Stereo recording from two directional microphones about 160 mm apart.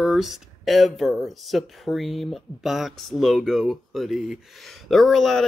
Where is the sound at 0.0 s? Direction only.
Centre (ahead or behind).